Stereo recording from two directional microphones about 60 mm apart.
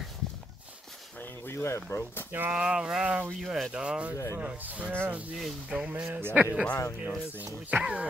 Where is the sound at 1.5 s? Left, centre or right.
Left.